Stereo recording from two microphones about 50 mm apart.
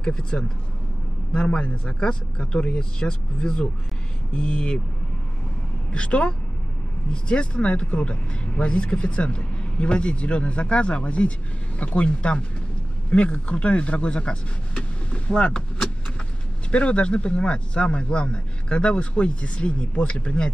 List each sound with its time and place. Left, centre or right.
0.0 s speech: centre
5.9 s speech: left
16.7 s speech: left